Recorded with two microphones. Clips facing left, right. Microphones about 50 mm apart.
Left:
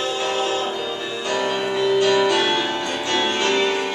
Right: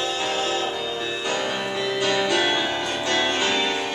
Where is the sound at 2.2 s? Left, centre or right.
Centre.